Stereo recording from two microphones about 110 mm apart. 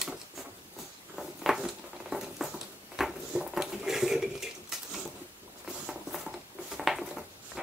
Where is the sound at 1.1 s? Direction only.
5° right (ahead or behind).